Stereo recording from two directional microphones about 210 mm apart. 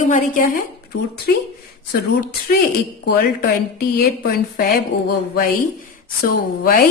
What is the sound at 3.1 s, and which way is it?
A woman's voice, 45° left (ahead or behind).